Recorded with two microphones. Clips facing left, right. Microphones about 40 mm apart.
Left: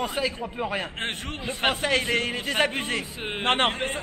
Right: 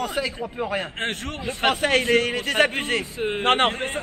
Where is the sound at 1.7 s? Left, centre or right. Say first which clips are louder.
Right 5 dB; right.